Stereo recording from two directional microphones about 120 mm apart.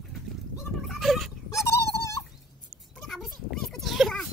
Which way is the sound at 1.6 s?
25° left (ahead or behind).